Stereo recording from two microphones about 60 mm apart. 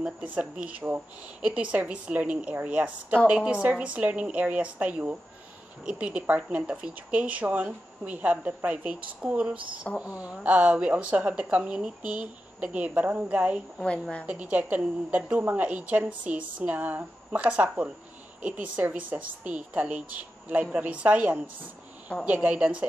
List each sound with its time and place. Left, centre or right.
0.0 s a woman's voice: right